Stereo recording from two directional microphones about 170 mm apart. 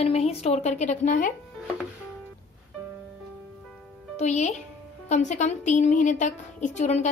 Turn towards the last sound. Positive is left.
turn(degrees=45)  # may be behind; listen again after turning